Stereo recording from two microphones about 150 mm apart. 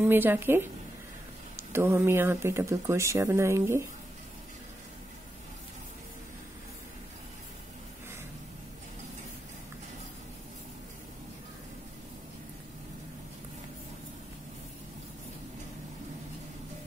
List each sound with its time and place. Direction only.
0.0 s speech: 15° right (ahead or behind)